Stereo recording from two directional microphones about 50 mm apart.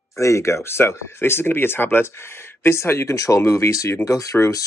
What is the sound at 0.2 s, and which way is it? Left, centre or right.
Speech, left.